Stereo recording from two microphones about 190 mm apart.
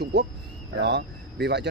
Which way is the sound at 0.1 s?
65° right (ahead or behind).